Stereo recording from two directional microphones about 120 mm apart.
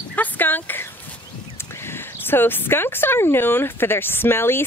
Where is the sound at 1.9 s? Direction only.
20° left (ahead or behind).